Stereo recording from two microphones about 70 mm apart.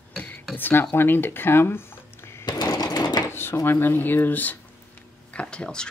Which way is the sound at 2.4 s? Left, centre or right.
Left.